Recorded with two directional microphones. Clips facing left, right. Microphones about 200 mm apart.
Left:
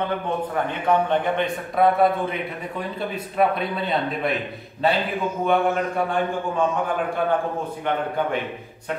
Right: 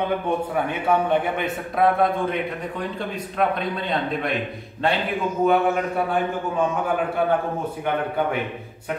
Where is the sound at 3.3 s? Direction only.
5° left (ahead or behind).